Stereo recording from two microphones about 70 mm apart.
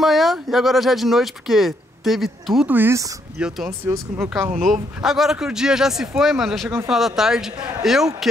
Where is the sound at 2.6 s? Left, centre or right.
Right.